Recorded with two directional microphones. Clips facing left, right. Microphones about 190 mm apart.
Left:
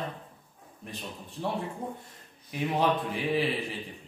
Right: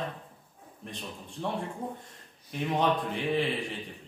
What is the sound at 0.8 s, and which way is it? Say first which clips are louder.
A man's voice: left 1 dB; 5° left (ahead or behind).